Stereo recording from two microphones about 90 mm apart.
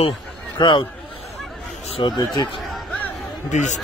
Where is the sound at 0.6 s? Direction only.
65° left (ahead or behind).